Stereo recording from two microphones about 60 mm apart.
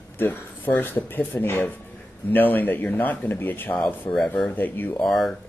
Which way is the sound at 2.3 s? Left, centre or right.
Left.